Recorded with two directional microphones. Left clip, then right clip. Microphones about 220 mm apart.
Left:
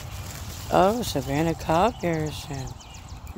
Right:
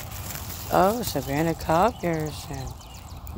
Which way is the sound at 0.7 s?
15° left (ahead or behind).